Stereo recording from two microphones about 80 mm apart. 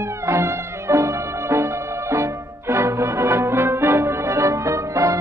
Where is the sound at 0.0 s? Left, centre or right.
Right.